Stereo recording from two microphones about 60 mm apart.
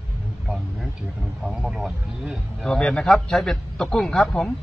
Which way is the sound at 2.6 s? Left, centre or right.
Centre.